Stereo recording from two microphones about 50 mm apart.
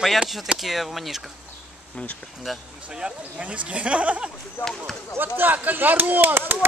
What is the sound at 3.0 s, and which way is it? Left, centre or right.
Speech, right.